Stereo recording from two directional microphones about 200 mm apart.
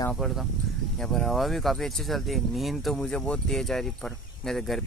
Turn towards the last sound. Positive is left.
turn(degrees=0)  # may be behind; listen again after turning